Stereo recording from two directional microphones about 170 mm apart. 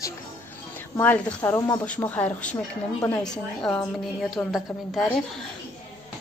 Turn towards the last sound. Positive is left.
turn(degrees=0)  # may be behind; listen again after turning